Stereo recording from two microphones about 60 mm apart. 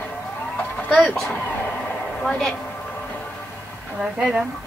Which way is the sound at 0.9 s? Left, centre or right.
Left.